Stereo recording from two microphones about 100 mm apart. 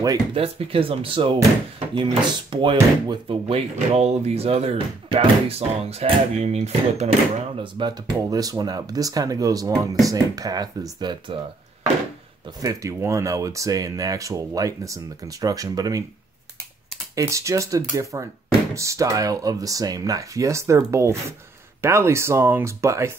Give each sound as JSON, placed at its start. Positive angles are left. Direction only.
{"t": 0.3, "sound": "speech", "side_deg": -70}
{"t": 7.6, "sound": "speech", "side_deg": -50}
{"t": 12.6, "sound": "speech", "side_deg": -30}
{"t": 17.1, "sound": "speech", "side_deg": -30}